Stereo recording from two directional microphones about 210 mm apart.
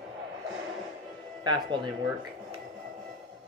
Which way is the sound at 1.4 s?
20° right (ahead or behind).